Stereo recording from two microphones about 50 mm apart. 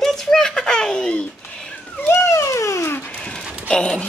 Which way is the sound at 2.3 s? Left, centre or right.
Left.